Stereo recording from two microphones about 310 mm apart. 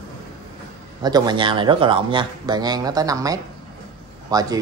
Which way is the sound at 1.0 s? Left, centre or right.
Centre.